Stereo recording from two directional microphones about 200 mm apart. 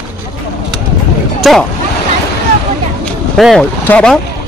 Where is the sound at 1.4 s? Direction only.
Centre (ahead or behind).